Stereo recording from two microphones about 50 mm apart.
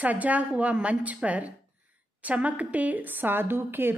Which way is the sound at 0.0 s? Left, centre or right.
Right.